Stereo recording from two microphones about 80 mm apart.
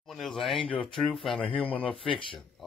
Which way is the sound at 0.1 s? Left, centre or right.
Centre.